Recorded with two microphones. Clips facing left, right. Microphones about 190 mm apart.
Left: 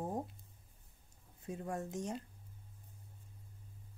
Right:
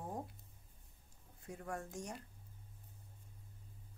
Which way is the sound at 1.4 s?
20° left (ahead or behind).